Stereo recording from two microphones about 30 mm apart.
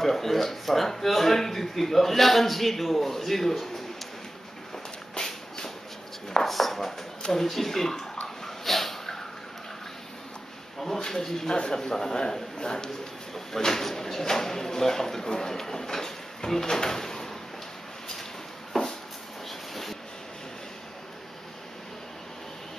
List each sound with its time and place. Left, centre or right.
0.0 s speech: centre
6.4 s speech: centre
8.6 s a sound: centre
11.0 s a man's voice: centre
18.7 s a sound: centre
19.7 s train: centre